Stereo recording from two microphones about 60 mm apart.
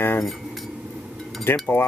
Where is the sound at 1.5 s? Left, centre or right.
Left.